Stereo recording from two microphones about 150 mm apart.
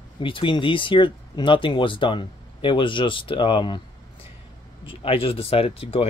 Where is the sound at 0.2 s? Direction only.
35° left (ahead or behind).